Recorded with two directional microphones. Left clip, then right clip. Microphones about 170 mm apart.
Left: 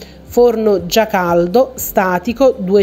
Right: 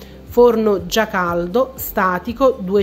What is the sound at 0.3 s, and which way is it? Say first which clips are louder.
A woman's voice: left 2 dB; 20° left (ahead or behind).